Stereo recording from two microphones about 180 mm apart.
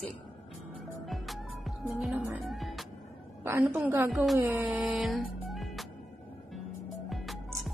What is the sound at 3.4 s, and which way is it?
Speech, 10° right (ahead or behind).